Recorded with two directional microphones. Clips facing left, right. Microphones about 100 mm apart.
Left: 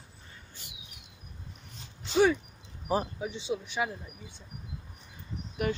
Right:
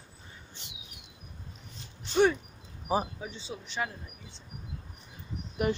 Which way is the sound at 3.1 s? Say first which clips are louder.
Left 7 dB; 15° left (ahead or behind).